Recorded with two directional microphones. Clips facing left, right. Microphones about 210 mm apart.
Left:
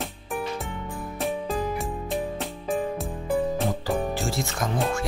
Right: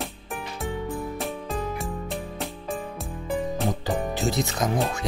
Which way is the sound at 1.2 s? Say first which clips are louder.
Left 3 dB; centre (ahead or behind).